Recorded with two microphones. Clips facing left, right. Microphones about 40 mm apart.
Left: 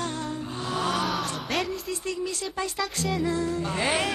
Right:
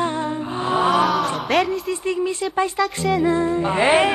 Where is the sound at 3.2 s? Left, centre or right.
Right.